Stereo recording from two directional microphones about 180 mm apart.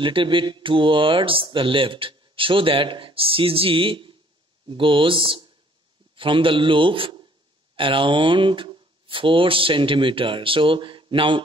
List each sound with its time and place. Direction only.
0.0 s speech: 30° right (ahead or behind)